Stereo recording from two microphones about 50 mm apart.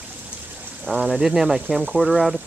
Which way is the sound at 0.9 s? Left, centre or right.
Right.